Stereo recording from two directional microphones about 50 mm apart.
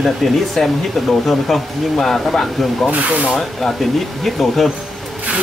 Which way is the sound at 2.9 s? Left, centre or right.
Right.